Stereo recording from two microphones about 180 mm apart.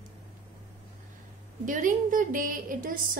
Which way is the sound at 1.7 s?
45° right (ahead or behind).